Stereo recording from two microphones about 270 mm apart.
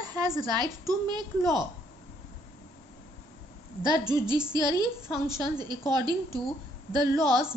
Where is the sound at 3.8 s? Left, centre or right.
Centre.